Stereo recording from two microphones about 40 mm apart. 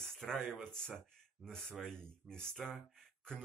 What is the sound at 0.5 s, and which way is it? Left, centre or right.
A man's voice, centre.